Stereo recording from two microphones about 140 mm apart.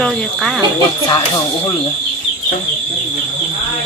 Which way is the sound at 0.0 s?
Centre (ahead or behind).